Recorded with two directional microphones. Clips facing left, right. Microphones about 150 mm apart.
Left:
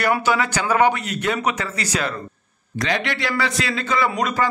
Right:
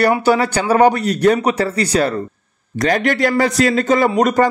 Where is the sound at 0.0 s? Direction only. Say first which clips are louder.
Right 6 dB; 35° right (ahead or behind).